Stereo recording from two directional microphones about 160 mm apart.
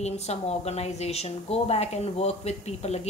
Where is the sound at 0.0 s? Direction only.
40° left (ahead or behind).